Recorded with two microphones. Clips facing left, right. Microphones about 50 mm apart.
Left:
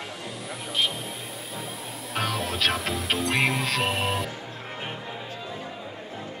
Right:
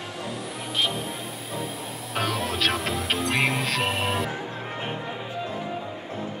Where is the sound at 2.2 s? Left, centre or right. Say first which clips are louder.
Right 1 dB; centre.